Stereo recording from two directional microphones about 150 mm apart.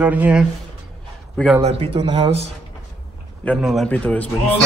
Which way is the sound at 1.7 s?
40° right (ahead or behind).